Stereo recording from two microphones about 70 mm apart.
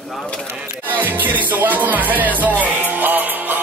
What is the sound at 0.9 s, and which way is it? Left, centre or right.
Music, right.